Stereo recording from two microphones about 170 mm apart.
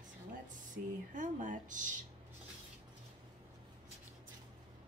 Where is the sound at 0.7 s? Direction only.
50° right (ahead or behind).